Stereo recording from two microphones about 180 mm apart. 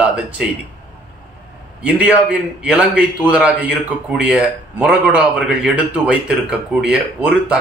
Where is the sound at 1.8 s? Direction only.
10° right (ahead or behind).